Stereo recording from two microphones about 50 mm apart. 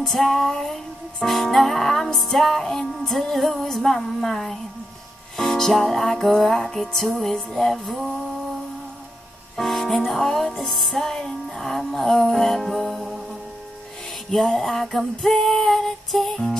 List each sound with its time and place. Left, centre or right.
0.0 s music: centre
9.6 s music: centre